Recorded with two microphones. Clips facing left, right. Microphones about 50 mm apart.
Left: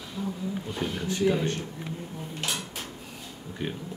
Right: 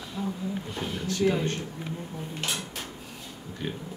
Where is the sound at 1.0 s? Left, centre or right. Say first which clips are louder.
Right 1 dB; centre.